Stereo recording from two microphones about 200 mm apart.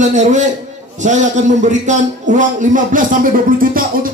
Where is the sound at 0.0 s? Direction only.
35° right (ahead or behind).